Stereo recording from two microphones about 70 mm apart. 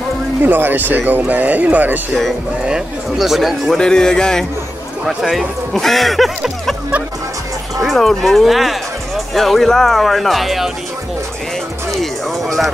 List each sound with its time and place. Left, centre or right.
0.4 s speech: right
2.6 s speech: centre
3.7 s speech: centre
5.0 s speech: centre
7.8 s speech: centre
12.0 s music: centre